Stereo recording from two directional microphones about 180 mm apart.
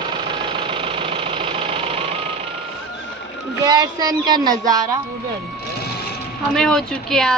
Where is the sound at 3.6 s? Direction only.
20° right (ahead or behind).